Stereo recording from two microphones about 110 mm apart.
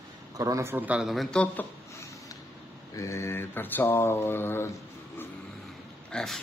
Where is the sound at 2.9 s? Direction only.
25° left (ahead or behind).